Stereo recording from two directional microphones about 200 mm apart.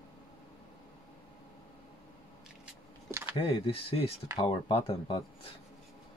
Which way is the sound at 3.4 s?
25° left (ahead or behind).